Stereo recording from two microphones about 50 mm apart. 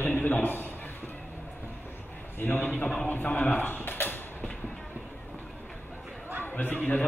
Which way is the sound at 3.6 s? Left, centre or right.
Left.